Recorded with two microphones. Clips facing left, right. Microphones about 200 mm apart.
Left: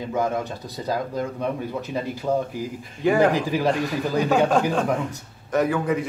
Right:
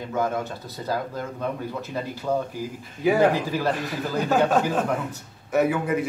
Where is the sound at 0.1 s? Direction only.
15° left (ahead or behind).